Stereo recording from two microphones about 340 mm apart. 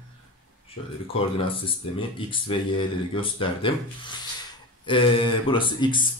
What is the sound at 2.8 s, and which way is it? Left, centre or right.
Speech, centre.